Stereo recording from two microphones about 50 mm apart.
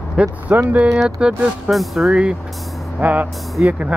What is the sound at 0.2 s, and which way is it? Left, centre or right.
Speech, right.